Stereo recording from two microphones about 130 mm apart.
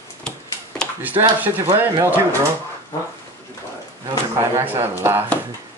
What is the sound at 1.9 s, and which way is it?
Speech, 20° right (ahead or behind).